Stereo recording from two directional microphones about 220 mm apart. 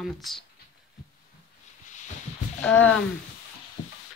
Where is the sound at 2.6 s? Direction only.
5° left (ahead or behind).